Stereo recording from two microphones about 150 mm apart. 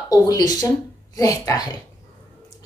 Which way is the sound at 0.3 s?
25° left (ahead or behind).